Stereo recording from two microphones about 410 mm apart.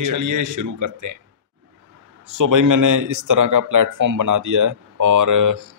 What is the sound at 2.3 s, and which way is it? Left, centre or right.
Speech, right.